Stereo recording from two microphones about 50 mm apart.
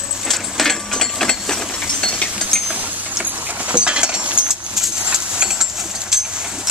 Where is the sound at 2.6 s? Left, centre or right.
Right.